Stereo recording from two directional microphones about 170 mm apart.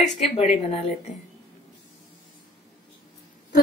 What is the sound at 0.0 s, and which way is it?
Speech, centre (ahead or behind).